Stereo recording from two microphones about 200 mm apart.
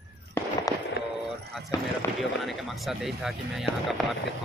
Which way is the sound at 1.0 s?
55° left (ahead or behind).